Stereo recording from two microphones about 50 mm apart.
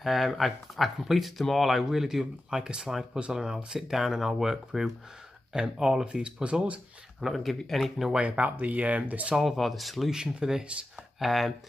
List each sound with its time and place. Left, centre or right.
0.0 s speech: centre; by 6.8 s right
7.2 s speech: centre
8.1 s speech: right
8.5 s speech: right
9.3 s speech: centre
10.1 s speech: centre
11.1 s speech: centre